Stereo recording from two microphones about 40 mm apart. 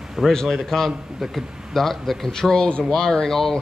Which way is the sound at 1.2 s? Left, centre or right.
Centre.